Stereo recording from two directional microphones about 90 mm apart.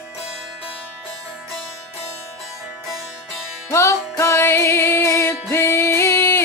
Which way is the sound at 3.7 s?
30° left (ahead or behind).